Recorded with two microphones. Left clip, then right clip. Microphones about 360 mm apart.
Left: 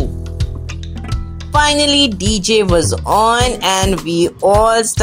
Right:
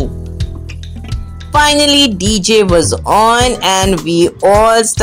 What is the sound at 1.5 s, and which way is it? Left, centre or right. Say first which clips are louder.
Speech: right 3 dB; left.